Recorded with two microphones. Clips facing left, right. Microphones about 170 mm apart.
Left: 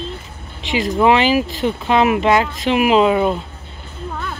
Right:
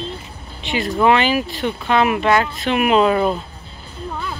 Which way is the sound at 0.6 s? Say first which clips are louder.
Left 2 dB; 90° left.